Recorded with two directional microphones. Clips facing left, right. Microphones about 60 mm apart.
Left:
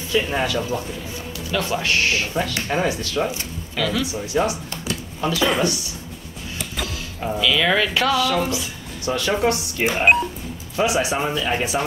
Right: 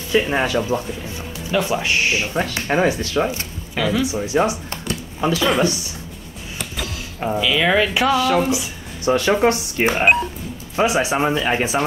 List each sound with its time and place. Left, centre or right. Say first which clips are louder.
0.1 s speech: right 3 dB; right
2.4 s speech: right 4 dB; right
3.7 s speech: right 3 dB; centre
6.8 s mechanisms: right 1 dB; centre
7.2 s speech: right 1 dB; centre
9.1 s speech: right 4 dB; right